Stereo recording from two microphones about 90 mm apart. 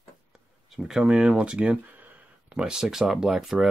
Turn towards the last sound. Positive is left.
turn(degrees=-5)  # may be behind; listen again after turning